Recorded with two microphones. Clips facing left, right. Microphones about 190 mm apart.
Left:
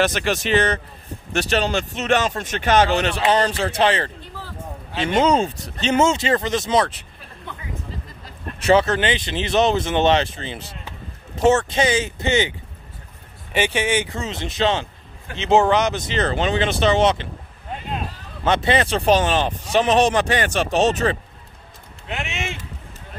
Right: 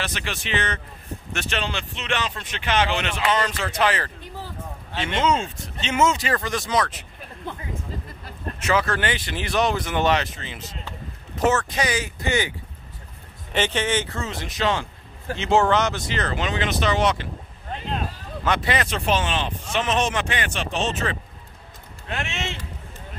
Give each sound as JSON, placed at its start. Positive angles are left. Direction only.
{"t": 0.0, "sound": "speech", "side_deg": 45}
{"t": 5.0, "sound": "speech", "side_deg": 40}
{"t": 8.5, "sound": "speech", "side_deg": 30}
{"t": 13.5, "sound": "speech", "side_deg": 10}
{"t": 18.4, "sound": "speech", "side_deg": 25}
{"t": 22.0, "sound": "a sound", "side_deg": 15}